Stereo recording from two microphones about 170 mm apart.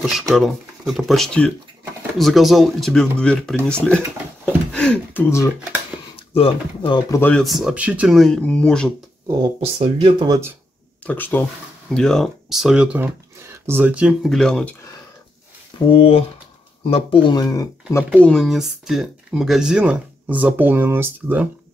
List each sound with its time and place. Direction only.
0.3 s speech: centre (ahead or behind)
6.1 s speech: 35° left (ahead or behind)
7.1 s speech: 10° left (ahead or behind)
9.3 s speech: 30° right (ahead or behind)
11.1 s speech: 10° left (ahead or behind)
15.9 s speech: 35° left (ahead or behind)
18.2 s speech: centre (ahead or behind)